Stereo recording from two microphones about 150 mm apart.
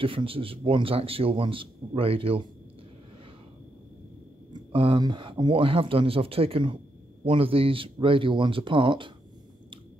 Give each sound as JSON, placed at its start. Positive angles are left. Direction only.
{"t": 0.0, "sound": "a man's voice", "side_deg": -35}
{"t": 4.5, "sound": "a man's voice", "side_deg": -35}